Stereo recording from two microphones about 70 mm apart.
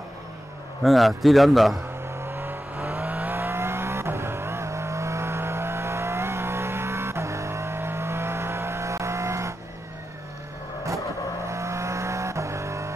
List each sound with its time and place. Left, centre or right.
0.8 s a man's voice: centre
2.2 s vehicle: right
11.4 s vehicle: right